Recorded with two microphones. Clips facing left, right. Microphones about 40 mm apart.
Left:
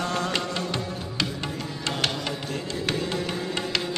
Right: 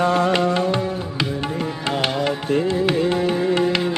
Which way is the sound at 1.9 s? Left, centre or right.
Centre.